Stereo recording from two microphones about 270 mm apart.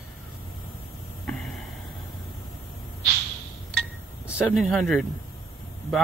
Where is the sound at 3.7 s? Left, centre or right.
Centre.